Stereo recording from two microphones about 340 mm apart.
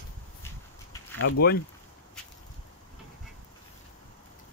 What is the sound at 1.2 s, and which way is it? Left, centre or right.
Speech, left.